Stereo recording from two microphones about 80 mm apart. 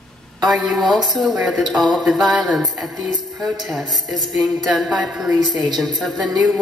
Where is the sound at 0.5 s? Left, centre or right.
Centre.